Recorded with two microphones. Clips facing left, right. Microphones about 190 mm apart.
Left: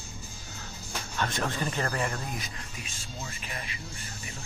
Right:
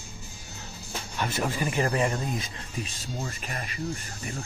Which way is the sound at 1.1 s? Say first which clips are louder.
Right 2 dB; 10° right (ahead or behind).